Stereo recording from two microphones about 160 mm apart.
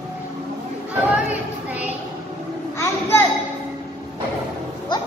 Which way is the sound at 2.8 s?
15° left (ahead or behind).